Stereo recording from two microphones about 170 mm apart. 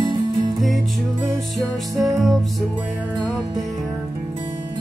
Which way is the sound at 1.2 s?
Centre (ahead or behind).